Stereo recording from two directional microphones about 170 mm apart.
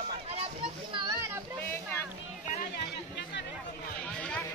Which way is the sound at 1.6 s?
15° left (ahead or behind).